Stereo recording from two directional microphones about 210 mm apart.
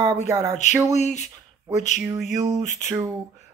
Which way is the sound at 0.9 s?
35° left (ahead or behind).